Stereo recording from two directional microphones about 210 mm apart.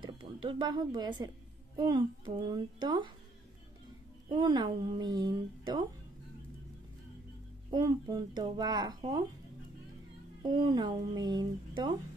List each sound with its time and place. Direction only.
0.0 s a woman's voice: 20° right (ahead or behind)
4.3 s speech: 20° right (ahead or behind)
7.7 s speech: 20° right (ahead or behind)
10.4 s speech: 20° right (ahead or behind)